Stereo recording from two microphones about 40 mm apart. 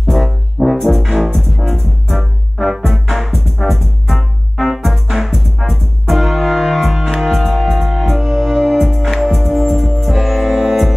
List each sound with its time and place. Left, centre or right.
0.0 s music: centre